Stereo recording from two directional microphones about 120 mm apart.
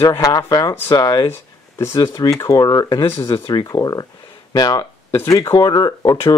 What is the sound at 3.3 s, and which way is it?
Speech, 40° left (ahead or behind).